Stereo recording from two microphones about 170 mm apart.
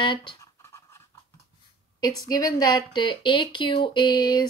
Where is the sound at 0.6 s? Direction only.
15° left (ahead or behind).